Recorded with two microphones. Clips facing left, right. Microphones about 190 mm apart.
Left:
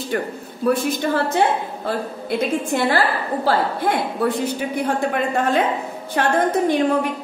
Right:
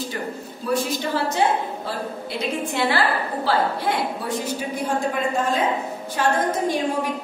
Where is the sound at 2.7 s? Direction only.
45° left (ahead or behind).